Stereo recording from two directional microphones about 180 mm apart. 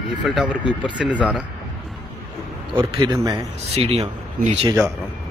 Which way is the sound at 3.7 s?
35° right (ahead or behind).